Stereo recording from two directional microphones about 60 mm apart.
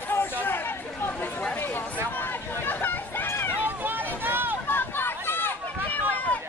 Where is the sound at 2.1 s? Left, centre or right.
Left.